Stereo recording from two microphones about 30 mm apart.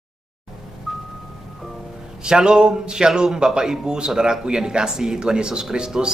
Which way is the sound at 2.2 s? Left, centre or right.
Right.